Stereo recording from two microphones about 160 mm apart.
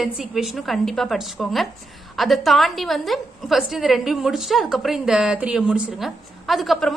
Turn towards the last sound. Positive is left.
turn(degrees=0)  # may be behind; listen again after turning